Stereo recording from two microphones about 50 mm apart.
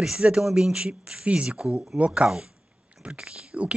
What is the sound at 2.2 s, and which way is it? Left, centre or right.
Speech, centre.